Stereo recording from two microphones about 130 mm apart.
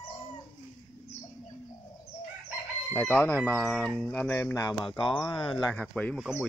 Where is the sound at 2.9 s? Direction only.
15° left (ahead or behind).